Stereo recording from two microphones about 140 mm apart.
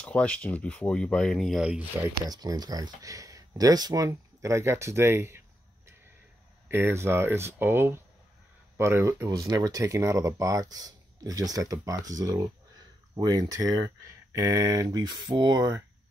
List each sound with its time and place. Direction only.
0.0 s speech: 10° left (ahead or behind)
2.2 s speech: 30° right (ahead or behind)
6.7 s speech: 15° right (ahead or behind)